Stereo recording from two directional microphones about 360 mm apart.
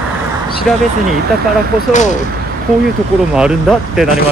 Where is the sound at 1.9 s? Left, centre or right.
Centre.